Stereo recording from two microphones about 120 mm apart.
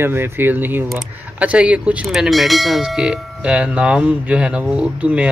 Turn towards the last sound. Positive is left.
turn(degrees=-10)  # may be behind; listen again after turning